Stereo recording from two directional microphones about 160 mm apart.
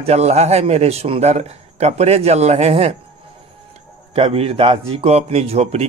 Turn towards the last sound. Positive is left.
turn(degrees=-40)  # may be behind; listen again after turning